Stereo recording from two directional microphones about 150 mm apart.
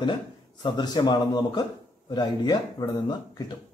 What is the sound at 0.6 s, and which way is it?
A man's voice, 30° left (ahead or behind).